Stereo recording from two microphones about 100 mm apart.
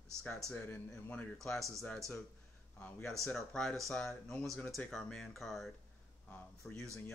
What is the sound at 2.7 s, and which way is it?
Speech, 20° left (ahead or behind).